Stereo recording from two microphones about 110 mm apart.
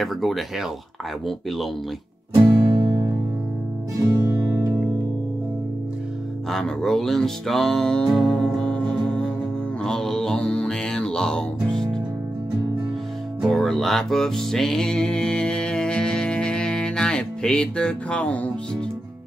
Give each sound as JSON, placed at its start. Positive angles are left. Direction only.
{"t": 0.0, "sound": "speech", "side_deg": 0}
{"t": 2.3, "sound": "music", "side_deg": -40}
{"t": 6.5, "sound": "music", "side_deg": 5}
{"t": 13.5, "sound": "music", "side_deg": 0}